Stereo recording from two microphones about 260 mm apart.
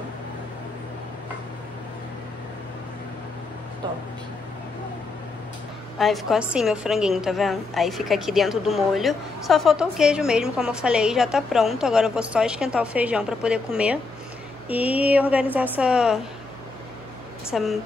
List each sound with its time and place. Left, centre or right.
5.9 s a woman's voice: centre
17.5 s a woman's voice: centre